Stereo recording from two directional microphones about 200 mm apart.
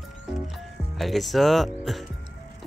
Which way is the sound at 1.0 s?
Centre (ahead or behind).